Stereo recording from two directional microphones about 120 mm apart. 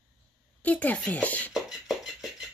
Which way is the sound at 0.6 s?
10° left (ahead or behind).